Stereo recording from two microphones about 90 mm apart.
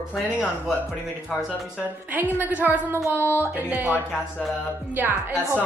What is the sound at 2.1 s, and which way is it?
Speech, 20° right (ahead or behind).